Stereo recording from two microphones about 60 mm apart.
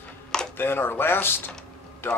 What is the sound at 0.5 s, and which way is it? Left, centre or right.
Speech, left.